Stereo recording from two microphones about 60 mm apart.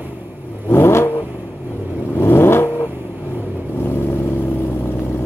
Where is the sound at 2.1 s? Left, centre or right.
Left.